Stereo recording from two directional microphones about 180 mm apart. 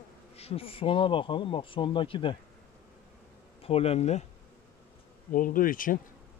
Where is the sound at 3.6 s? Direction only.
35° left (ahead or behind).